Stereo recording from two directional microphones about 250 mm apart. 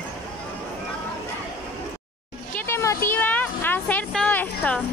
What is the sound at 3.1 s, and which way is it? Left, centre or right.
Children playing, centre.